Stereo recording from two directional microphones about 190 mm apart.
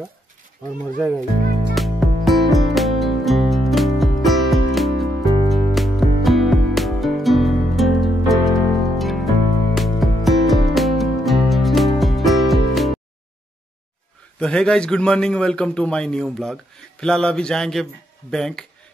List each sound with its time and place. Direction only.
1.8 s music: centre (ahead or behind)
14.4 s a man's voice: 5° left (ahead or behind)